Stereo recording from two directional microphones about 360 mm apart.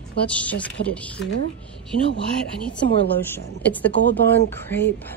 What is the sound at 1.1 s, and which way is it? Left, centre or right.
Speech, left.